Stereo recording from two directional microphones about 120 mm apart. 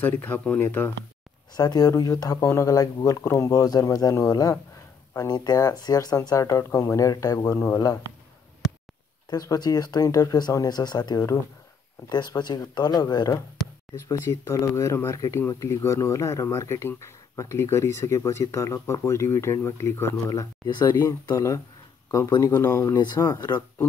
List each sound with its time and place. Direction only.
0.0 s speech: 15° left (ahead or behind)
1.5 s speech: 30° left (ahead or behind)
9.3 s speech: 30° left (ahead or behind)
13.9 s speech: 20° left (ahead or behind)
22.9 s speech: 35° left (ahead or behind)